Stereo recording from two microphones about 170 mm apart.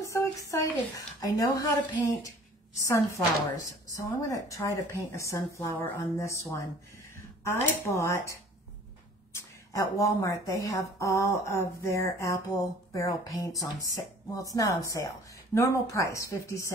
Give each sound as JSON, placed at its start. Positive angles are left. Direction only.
{"t": 0.0, "sound": "a woman's voice", "side_deg": 20}